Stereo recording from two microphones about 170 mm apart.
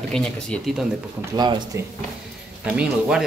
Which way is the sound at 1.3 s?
25° right (ahead or behind).